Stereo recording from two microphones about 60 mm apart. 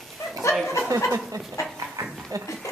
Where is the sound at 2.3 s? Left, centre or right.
Right.